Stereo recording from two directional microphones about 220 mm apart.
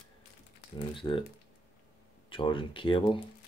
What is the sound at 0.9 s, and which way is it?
Speech, 20° left (ahead or behind).